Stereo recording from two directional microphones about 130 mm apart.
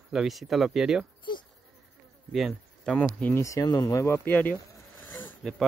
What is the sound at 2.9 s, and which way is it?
Speech, 10° left (ahead or behind).